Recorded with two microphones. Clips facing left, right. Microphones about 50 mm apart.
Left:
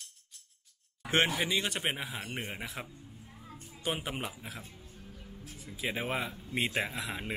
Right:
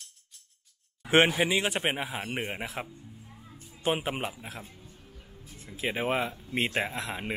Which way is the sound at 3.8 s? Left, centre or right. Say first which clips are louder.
Right 6 dB; centre.